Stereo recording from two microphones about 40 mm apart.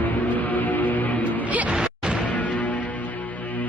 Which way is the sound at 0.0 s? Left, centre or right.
Left.